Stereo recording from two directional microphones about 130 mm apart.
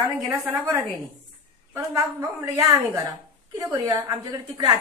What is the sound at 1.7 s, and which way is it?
A woman's voice, 25° right (ahead or behind).